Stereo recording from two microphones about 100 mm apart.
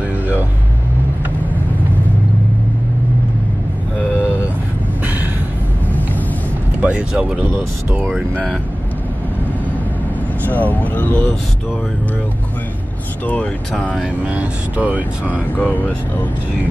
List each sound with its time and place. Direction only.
6.8 s a sound: 10° right (ahead or behind)
10.4 s speech: 15° left (ahead or behind)
13.2 s speech: 15° left (ahead or behind)
13.9 s speech: 10° right (ahead or behind)
15.5 s speech: 15° left (ahead or behind)